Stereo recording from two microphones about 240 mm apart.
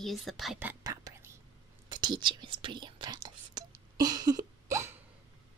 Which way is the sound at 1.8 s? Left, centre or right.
Centre.